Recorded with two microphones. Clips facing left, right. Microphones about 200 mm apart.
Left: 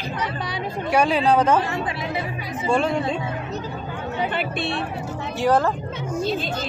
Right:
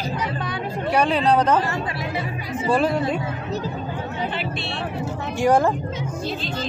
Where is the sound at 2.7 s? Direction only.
5° right (ahead or behind).